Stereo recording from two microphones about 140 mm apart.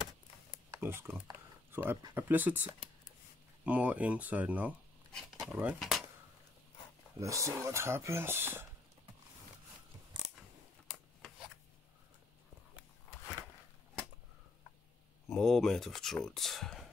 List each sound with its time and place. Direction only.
0.7 s speech: 15° right (ahead or behind)
5.1 s a sound: centre (ahead or behind)
5.8 s speech: centre (ahead or behind)
7.2 s speech: 20° right (ahead or behind)
15.2 s speech: centre (ahead or behind)